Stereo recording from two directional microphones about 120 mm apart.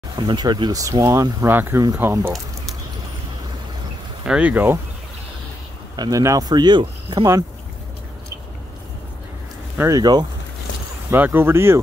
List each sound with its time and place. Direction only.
0.3 s speech: 40° right (ahead or behind); by 2.3 s 20° right (ahead or behind)
4.2 s speech: 10° right (ahead or behind)
5.9 s speech: 30° right (ahead or behind)
9.8 s speech: 30° right (ahead or behind)
11.1 s speech: 15° right (ahead or behind)